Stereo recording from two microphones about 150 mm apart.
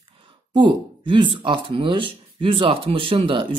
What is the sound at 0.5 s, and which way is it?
Speech, 30° right (ahead or behind).